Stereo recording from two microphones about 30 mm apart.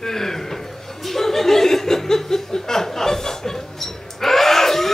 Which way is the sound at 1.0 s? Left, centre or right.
Centre.